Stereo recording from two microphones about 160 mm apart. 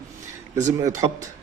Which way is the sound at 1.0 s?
25° right (ahead or behind).